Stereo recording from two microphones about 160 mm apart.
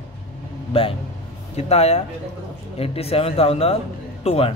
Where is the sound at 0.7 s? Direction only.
35° left (ahead or behind).